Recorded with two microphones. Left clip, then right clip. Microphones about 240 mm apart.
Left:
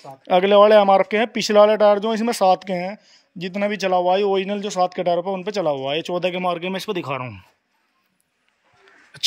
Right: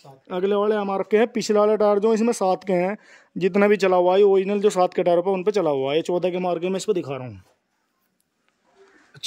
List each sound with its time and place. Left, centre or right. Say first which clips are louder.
0.2 s speech: left 9 dB; centre